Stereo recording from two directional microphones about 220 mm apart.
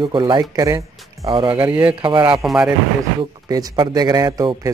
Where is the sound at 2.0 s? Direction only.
20° right (ahead or behind).